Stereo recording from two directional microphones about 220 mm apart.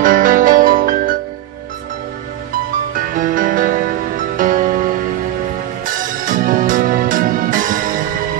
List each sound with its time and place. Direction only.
0.0 s music: 40° right (ahead or behind)
2.9 s music: 40° right (ahead or behind)